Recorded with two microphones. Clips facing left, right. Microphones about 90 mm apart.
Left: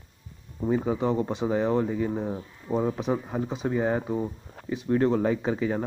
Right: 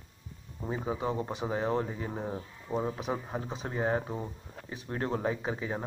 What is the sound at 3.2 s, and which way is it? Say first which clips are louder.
Speech: left 8 dB; 15° right (ahead or behind).